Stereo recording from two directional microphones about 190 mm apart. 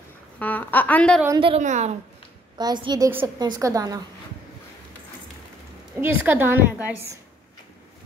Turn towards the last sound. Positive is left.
turn(degrees=-10)  # may be behind; listen again after turning